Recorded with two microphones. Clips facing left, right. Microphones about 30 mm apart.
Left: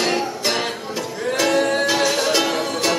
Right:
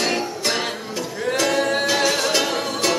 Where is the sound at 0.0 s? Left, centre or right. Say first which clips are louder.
Left 2 dB; centre.